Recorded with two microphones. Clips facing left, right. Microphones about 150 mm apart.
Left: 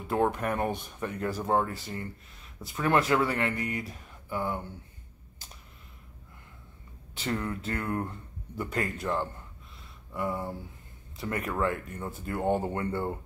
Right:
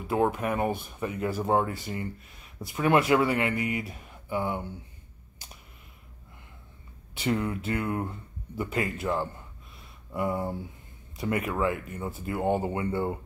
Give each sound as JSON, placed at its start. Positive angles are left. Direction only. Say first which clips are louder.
{"t": 0.1, "sound": "speech", "louder": "right 1 dB", "side_deg": -5}
{"t": 7.2, "sound": "speech", "louder": "right 4 dB", "side_deg": -10}